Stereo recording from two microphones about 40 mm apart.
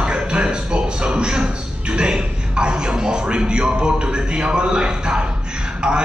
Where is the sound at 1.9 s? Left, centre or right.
Right.